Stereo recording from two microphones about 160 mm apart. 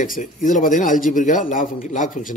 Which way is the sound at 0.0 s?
55° left (ahead or behind).